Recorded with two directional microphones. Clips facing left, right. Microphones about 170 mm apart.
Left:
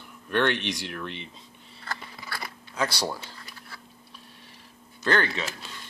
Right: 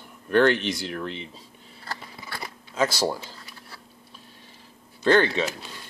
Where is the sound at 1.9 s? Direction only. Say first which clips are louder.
Even; 15° right (ahead or behind).